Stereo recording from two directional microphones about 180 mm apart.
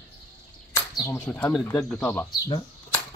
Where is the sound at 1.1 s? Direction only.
5° left (ahead or behind).